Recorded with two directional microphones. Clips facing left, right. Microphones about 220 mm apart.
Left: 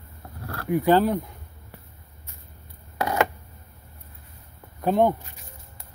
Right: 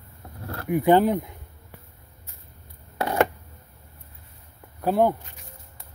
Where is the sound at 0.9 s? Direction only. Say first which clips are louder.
Right 2 dB; 20° right (ahead or behind).